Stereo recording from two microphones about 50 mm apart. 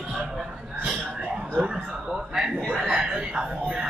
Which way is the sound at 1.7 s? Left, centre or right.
Right.